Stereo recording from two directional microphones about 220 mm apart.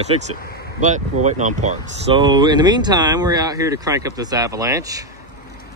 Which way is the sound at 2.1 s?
20° right (ahead or behind).